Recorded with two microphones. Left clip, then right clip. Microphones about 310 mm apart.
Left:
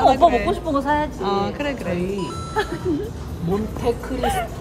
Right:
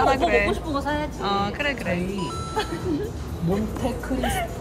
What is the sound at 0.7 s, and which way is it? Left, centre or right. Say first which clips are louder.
Speech: left 6 dB; left.